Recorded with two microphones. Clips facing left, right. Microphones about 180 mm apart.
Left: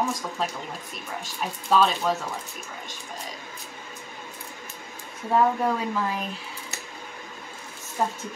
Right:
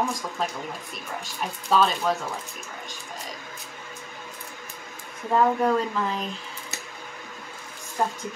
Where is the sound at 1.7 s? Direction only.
Centre (ahead or behind).